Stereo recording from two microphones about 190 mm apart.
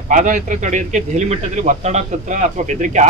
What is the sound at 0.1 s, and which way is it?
A man's voice, 40° right (ahead or behind).